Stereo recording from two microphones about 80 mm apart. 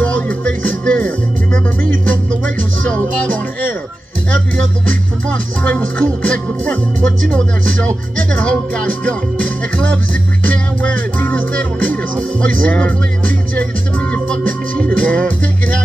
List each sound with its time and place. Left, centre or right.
0.0 s music: centre
5.6 s music: centre
14.1 s music: centre